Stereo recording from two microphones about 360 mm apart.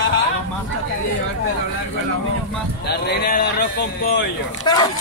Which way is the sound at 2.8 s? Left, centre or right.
Left.